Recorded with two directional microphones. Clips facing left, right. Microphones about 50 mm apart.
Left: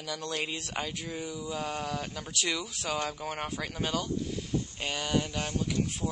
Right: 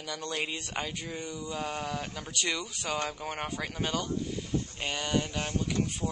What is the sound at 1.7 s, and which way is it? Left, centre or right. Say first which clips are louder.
Speech: even; centre.